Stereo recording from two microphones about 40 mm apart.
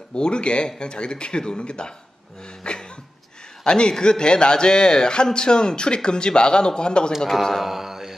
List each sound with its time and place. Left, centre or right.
0.1 s a man's voice: left
2.6 s cough: left
3.6 s a man's voice: left
7.6 s mantra: centre